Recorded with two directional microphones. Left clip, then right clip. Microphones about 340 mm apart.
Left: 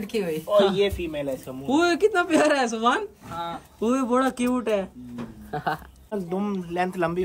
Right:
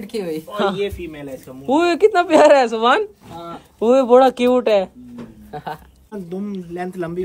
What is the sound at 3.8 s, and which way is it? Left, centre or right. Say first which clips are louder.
Speech: right 11 dB; right.